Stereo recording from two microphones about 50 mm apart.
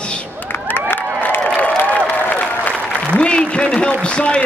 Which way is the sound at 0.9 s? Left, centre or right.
Left.